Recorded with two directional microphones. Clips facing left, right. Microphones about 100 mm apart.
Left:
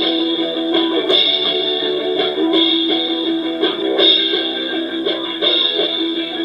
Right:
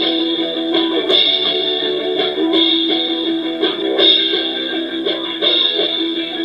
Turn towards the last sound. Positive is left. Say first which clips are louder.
# even
turn(degrees=35)  # may be behind; listen again after turning